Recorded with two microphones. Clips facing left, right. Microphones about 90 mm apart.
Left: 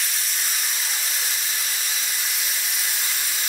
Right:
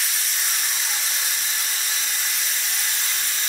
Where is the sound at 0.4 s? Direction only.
Centre (ahead or behind).